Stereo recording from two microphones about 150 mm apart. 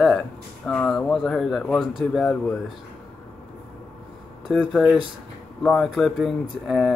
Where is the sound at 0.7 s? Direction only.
5° left (ahead or behind).